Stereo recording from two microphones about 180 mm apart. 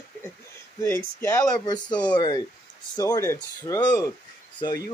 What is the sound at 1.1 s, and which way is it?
Speech, 15° left (ahead or behind).